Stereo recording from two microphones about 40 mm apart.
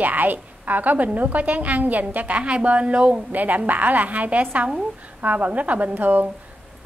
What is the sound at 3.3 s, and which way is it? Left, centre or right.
A woman's voice, right.